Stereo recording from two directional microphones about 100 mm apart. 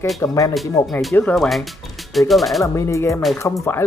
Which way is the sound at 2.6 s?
30° left (ahead or behind).